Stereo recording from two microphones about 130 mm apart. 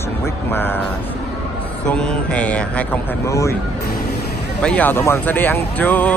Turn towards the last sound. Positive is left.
turn(degrees=10)  # may be behind; listen again after turning